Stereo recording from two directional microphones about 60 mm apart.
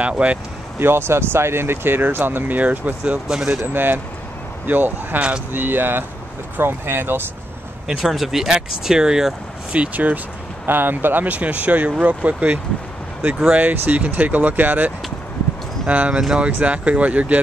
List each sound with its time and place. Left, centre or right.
0.0 s speech: right
0.7 s speech: right
3.3 s speech: centre
3.6 s speech: right
8.0 s speech: centre
9.8 s speech: right
15.9 s speech: right